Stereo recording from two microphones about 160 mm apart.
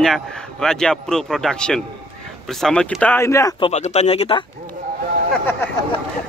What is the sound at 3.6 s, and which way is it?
Speech, 45° left (ahead or behind).